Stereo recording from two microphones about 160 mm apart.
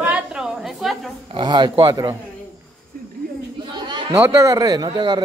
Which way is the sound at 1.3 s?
30° right (ahead or behind).